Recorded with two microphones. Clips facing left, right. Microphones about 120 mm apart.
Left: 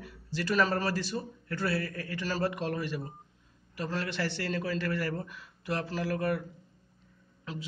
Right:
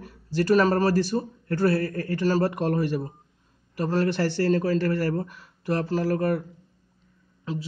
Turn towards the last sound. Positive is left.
turn(degrees=-30)  # may be behind; listen again after turning